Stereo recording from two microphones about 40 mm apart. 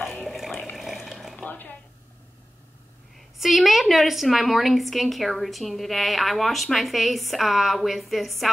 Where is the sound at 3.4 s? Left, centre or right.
Centre.